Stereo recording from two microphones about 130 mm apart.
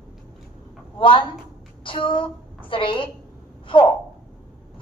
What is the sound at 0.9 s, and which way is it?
A woman's voice, 40° left (ahead or behind).